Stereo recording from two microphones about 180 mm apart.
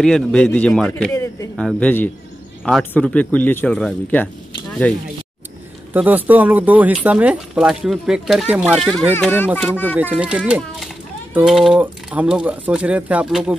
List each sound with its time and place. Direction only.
0.0 s a man's voice: 5° left (ahead or behind)
1.1 s speech: 15° left (ahead or behind)
1.6 s speech: 5° left (ahead or behind)
5.9 s speech: 10° right (ahead or behind)
8.7 s a man's voice: 5° left (ahead or behind)
9.5 s a man's voice: centre (ahead or behind)